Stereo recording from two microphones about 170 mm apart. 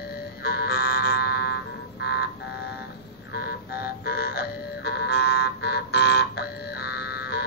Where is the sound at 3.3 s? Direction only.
65° left (ahead or behind).